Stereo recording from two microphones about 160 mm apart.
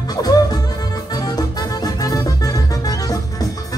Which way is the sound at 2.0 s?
20° left (ahead or behind).